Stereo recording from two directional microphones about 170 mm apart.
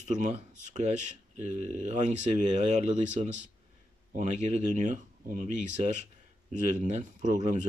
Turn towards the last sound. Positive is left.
turn(degrees=-45)  # may be behind; listen again after turning